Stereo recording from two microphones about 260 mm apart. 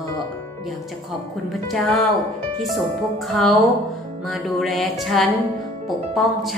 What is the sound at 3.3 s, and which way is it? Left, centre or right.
A woman's voice, centre.